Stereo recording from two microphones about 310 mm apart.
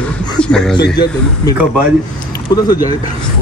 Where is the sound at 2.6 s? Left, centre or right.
Centre.